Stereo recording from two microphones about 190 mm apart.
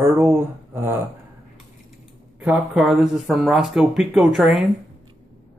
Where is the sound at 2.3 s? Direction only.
5° right (ahead or behind).